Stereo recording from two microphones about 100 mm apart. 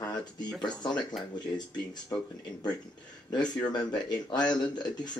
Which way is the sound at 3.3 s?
45° left (ahead or behind).